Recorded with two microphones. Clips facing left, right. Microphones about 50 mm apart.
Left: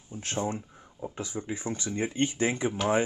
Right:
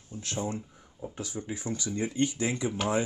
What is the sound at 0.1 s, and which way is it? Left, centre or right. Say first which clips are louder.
Speech: left 1 dB; centre.